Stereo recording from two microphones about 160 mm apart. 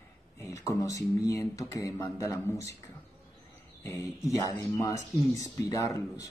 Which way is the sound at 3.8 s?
20° left (ahead or behind).